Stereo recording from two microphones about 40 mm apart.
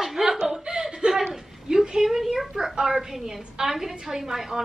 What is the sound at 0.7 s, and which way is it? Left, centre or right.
Chuckle, right.